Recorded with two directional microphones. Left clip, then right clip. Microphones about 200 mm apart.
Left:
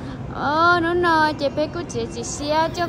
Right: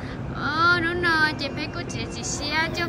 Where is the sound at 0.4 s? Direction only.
15° left (ahead or behind).